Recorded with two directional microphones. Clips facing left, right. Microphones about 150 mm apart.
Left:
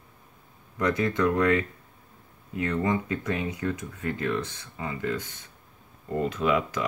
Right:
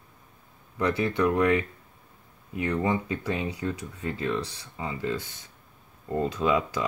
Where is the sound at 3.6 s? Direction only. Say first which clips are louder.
Left 1 dB; 30° right (ahead or behind).